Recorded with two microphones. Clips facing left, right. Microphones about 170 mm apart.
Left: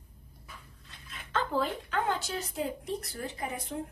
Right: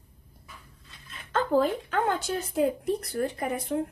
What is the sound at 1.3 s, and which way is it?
A woman's voice, 45° right (ahead or behind).